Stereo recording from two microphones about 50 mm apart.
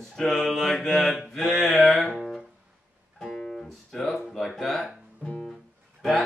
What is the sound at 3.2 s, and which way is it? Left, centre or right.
Music, centre.